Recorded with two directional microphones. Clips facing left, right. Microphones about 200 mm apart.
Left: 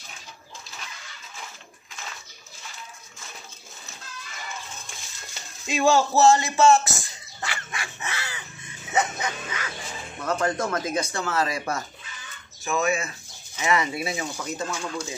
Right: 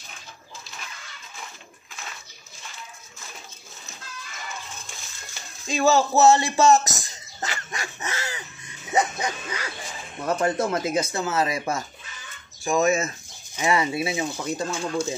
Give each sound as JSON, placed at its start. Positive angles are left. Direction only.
{"t": 5.7, "sound": "speech", "side_deg": -5}
{"t": 6.3, "sound": "dog", "side_deg": -35}
{"t": 8.9, "sound": "bow-wow", "side_deg": -35}
{"t": 10.2, "sound": "speech", "side_deg": -25}
{"t": 12.6, "sound": "speech", "side_deg": -40}
{"t": 13.6, "sound": "speech", "side_deg": -30}